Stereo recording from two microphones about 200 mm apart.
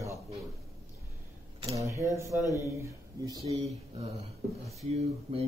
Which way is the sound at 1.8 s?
15° right (ahead or behind).